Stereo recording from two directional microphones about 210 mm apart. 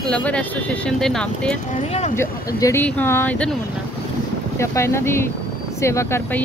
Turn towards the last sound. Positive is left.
turn(degrees=10)  # may be behind; listen again after turning